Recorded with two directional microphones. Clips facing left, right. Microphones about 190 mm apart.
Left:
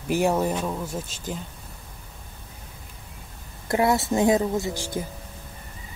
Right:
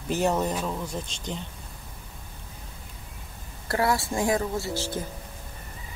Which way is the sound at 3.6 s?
20° left (ahead or behind).